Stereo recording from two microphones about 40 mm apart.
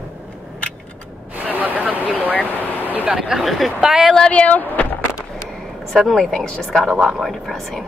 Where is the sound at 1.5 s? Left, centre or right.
Right.